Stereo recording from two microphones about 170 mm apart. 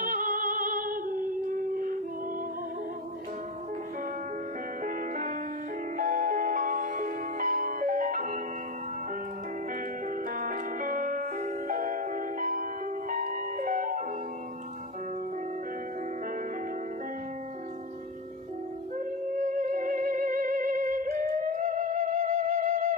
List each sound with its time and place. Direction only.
0.0 s music: 50° right (ahead or behind)
4.8 s music: 50° right (ahead or behind)
10.3 s music: 50° right (ahead or behind)
18.9 s music: 45° right (ahead or behind)